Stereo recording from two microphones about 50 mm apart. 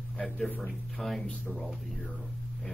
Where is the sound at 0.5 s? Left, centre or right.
Centre.